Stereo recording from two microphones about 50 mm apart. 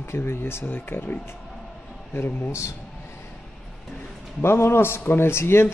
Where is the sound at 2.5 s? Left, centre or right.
Left.